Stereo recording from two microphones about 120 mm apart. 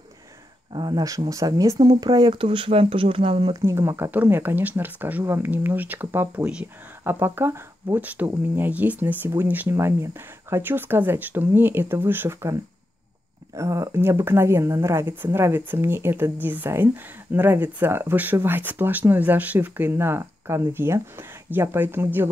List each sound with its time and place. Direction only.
0.7 s speech: 35° right (ahead or behind)
3.6 s speech: 20° right (ahead or behind)
13.6 s speech: 25° right (ahead or behind)